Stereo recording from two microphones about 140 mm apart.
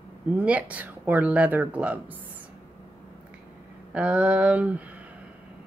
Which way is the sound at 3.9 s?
10° right (ahead or behind).